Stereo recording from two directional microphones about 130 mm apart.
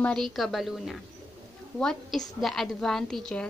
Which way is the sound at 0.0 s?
5° left (ahead or behind).